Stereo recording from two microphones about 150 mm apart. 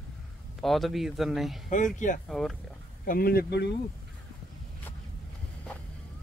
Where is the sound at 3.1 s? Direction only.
85° left.